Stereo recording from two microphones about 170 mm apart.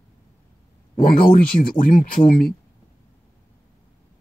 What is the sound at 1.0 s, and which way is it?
Speech, 55° left (ahead or behind).